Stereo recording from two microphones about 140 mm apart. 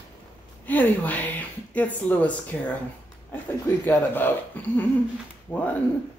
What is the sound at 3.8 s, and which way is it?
Speech, 15° left (ahead or behind).